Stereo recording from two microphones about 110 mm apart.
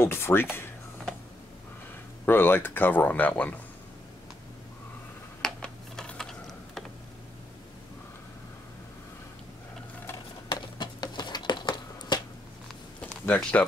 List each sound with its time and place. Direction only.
0.0 s speech: 20° left (ahead or behind)
2.2 s speech: 20° left (ahead or behind)
5.4 s computer keyboard: 5° left (ahead or behind)
10.5 s a sound: 45° left (ahead or behind)
13.2 s speech: 15° left (ahead or behind)